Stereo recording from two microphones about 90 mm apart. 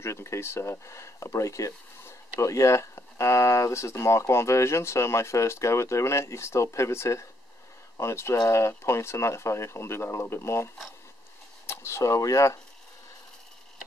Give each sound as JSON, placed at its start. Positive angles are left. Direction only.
{"t": 0.0, "sound": "speech", "side_deg": 30}